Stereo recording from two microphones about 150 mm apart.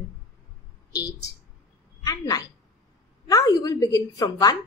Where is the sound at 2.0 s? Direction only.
25° left (ahead or behind).